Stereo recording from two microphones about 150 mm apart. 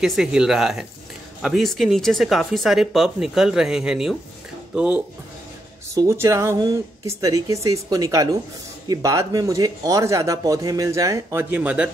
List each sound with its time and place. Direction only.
0.0 s speech: centre (ahead or behind)